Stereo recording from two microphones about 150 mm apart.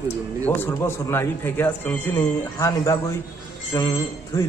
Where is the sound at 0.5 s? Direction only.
15° left (ahead or behind).